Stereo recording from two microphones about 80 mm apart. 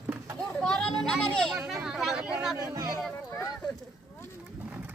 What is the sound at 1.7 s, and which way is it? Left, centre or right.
Speech, centre.